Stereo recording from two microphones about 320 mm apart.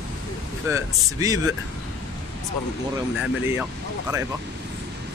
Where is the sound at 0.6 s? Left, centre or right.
Centre.